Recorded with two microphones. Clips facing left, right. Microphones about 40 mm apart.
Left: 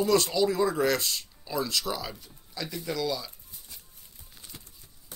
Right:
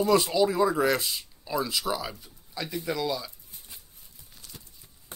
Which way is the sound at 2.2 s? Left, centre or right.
Centre.